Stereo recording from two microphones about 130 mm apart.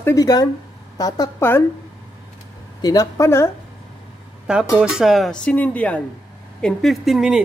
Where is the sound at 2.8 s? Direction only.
30° left (ahead or behind).